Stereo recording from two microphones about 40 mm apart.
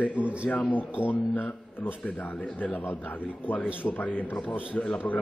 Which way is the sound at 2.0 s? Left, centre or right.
Left.